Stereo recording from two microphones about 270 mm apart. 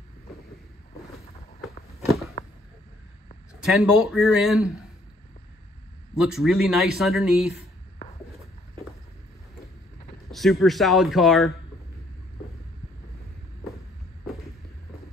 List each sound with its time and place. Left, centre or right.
2.4 s a sound: left
3.6 s speech: centre
6.1 s speech: centre
10.3 s speech: centre